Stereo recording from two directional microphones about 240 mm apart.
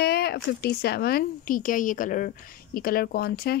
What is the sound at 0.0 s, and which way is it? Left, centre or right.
Speech, left.